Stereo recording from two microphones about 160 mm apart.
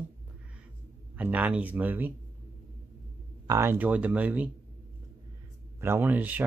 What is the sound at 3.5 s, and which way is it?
Speech, 15° right (ahead or behind).